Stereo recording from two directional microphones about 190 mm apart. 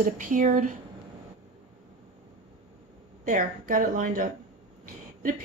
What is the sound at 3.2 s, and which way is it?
A woman's voice, 45° right (ahead or behind).